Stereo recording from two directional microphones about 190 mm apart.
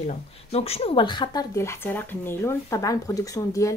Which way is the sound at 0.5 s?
30° left (ahead or behind).